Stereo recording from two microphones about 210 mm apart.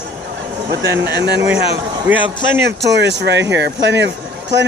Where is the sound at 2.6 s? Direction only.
55° right (ahead or behind).